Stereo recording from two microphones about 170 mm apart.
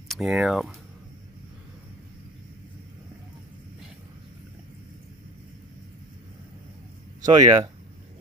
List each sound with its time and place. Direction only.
0.1 s speech: 5° right (ahead or behind)
7.2 s speech: 20° right (ahead or behind)